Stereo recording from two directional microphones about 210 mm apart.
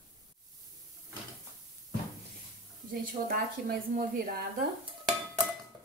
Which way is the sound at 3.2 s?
45° right (ahead or behind).